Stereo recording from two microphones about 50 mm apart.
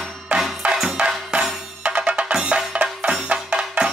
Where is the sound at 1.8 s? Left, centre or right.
Right.